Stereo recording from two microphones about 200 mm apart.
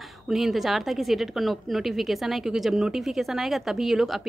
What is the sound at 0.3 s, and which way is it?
A woman's voice, centre (ahead or behind).